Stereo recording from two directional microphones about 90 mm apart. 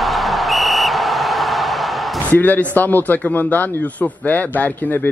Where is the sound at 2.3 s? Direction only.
15° left (ahead or behind).